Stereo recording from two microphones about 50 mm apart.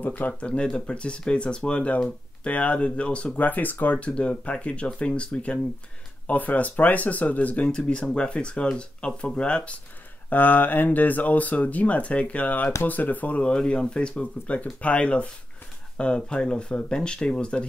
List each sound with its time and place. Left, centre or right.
0.0 s speech: left
0.3 s speech: left
3.4 s speech: left
4.0 s speech: left
7.6 s speech: centre
10.3 s speech: left
13.4 s speech: centre